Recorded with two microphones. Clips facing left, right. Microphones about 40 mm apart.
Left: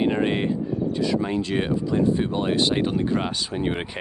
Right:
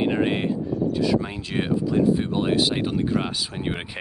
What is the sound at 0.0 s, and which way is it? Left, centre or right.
Speech, centre.